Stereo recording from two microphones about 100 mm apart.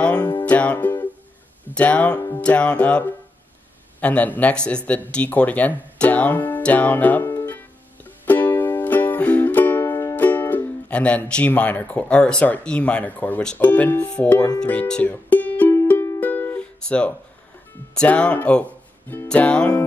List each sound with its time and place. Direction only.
0.0 s music: 10° left (ahead or behind)
1.7 s speech: 15° left (ahead or behind)
2.1 s music: 35° left (ahead or behind)
2.4 s speech: 10° left (ahead or behind)
5.1 s music: 15° left (ahead or behind)
10.1 s speech: 20° left (ahead or behind)
15.9 s music: 20° left (ahead or behind)
16.8 s speech: 10° left (ahead or behind)